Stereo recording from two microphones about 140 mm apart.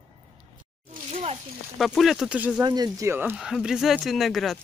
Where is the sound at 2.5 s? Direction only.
30° right (ahead or behind).